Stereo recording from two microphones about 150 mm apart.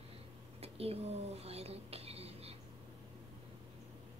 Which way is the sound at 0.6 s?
40° right (ahead or behind).